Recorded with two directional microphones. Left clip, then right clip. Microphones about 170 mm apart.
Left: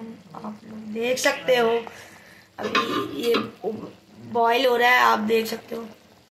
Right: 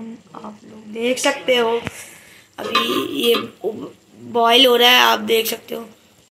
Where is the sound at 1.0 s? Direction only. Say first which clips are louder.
Right 3 dB; 15° right (ahead or behind).